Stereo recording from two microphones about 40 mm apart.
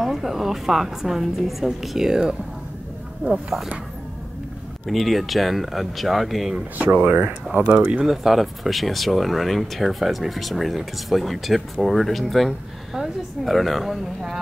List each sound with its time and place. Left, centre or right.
0.0 s a woman's voice: centre
4.8 s speech: centre
7.0 s speech: right
7.5 s speech: right
8.0 s speech: centre